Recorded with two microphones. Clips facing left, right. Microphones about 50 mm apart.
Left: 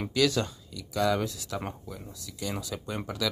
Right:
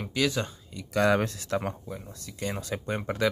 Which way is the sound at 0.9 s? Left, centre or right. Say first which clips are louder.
Right 3 dB; right.